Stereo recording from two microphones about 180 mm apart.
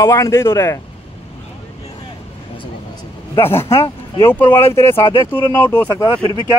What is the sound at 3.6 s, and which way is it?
Speech, 30° left (ahead or behind).